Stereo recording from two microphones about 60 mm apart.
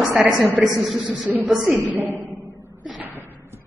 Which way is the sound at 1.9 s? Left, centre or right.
Right.